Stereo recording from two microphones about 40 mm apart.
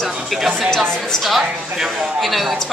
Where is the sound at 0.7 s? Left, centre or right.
Centre.